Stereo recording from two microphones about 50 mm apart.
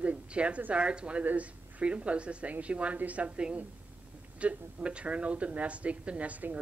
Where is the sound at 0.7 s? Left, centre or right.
Right.